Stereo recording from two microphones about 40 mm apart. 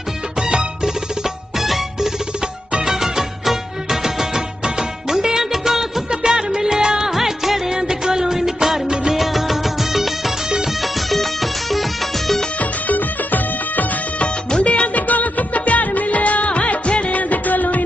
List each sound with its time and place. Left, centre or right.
0.4 s music: centre
1.6 s music: centre
6.2 s music of bollywood: centre
9.2 s music: centre
12.5 s music: left
14.2 s music of bollywood: left